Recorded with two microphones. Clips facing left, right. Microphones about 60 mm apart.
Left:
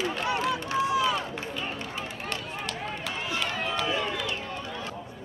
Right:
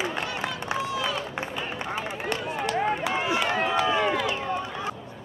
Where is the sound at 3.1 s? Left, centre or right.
Right.